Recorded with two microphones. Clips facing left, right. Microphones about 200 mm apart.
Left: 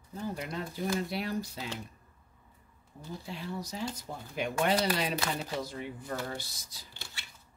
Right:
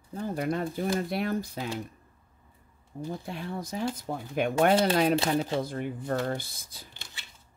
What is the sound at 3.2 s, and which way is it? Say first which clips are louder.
Speech: right 3 dB; 55° right (ahead or behind).